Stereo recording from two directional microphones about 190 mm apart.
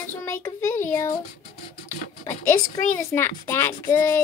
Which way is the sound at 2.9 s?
15° left (ahead or behind).